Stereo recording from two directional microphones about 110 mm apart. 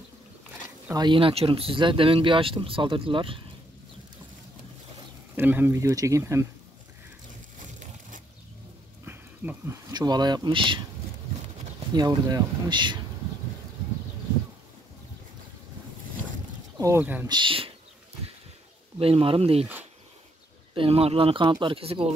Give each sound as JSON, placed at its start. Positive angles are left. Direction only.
{"t": 0.9, "sound": "speech", "side_deg": -45}
{"t": 5.3, "sound": "speech", "side_deg": -20}
{"t": 9.0, "sound": "a sound", "side_deg": -20}
{"t": 9.7, "sound": "speech", "side_deg": -35}
{"t": 11.9, "sound": "speech", "side_deg": -40}
{"t": 16.7, "sound": "a sound", "side_deg": -30}
{"t": 17.0, "sound": "speech", "side_deg": -15}
{"t": 17.3, "sound": "speech", "side_deg": -50}
{"t": 18.9, "sound": "speech", "side_deg": -60}
{"t": 20.7, "sound": "speech", "side_deg": -60}